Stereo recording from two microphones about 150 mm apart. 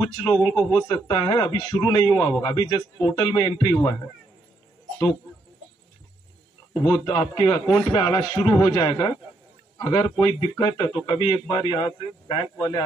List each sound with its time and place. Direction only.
0.0 s speech: 30° left (ahead or behind)
6.7 s speech: 30° left (ahead or behind)